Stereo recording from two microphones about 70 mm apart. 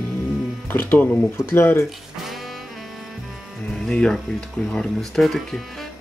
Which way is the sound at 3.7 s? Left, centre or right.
Centre.